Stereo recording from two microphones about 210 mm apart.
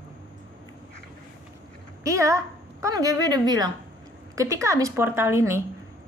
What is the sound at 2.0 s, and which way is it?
A woman's voice, 15° right (ahead or behind).